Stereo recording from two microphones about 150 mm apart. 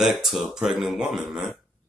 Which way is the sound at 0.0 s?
Centre (ahead or behind).